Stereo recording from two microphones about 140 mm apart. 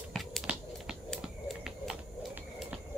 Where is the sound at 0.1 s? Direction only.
Centre (ahead or behind).